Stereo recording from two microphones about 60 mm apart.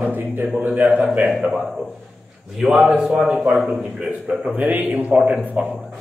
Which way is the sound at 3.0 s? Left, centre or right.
Centre.